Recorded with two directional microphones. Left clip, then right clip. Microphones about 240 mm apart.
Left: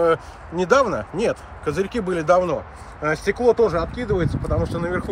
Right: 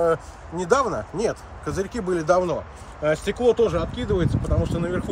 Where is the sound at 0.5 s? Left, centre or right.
Left.